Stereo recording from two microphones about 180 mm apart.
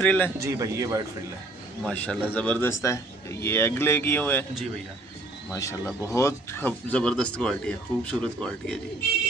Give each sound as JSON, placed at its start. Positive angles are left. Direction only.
{"t": 0.0, "sound": "speech", "side_deg": 10}
{"t": 0.4, "sound": "a man's voice", "side_deg": -15}
{"t": 1.9, "sound": "speech", "side_deg": 5}
{"t": 5.5, "sound": "speech", "side_deg": 15}